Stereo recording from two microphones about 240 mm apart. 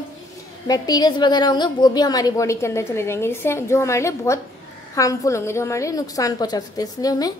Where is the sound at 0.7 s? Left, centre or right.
Centre.